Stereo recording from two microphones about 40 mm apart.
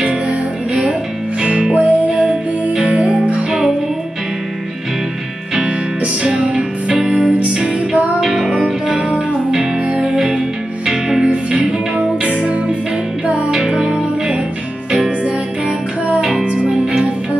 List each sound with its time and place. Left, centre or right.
0.3 s music: right
5.5 s music: right
8.2 s music: centre
8.8 s music: right
12.2 s music: right
13.7 s music: centre